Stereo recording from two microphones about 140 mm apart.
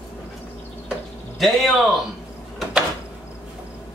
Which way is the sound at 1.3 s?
Centre (ahead or behind).